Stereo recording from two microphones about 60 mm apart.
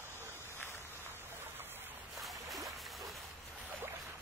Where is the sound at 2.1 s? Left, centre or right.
Centre.